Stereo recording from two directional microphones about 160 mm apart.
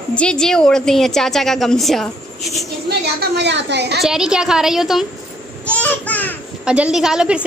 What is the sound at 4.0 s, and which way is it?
A woman's voice, 5° right (ahead or behind).